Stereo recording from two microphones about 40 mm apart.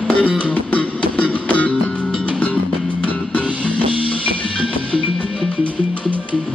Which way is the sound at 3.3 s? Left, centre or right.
Left.